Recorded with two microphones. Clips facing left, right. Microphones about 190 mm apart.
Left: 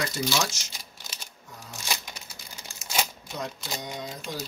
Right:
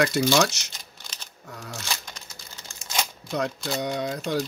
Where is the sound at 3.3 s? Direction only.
70° right (ahead or behind).